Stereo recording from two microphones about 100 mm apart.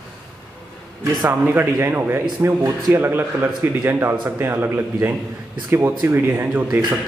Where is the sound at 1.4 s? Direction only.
20° right (ahead or behind).